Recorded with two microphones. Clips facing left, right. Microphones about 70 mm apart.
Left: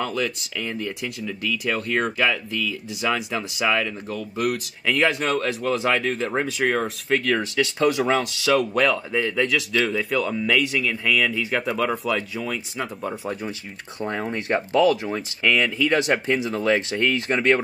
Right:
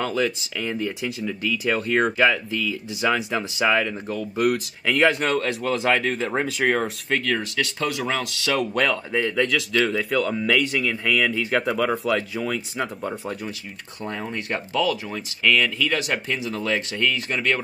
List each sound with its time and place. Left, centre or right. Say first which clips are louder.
0.0 s speech: right 2 dB; centre
7.2 s speech: left 3 dB; centre
8.5 s speech: left 1 dB; centre
13.2 s speech: left 2 dB; centre
14.5 s speech: left 5 dB; left